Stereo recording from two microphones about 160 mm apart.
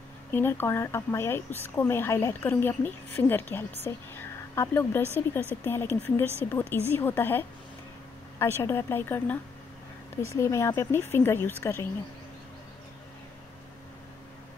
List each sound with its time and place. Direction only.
0.3 s speech: 15° left (ahead or behind)